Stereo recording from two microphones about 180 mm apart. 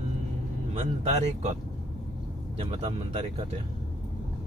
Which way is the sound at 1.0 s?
40° right (ahead or behind).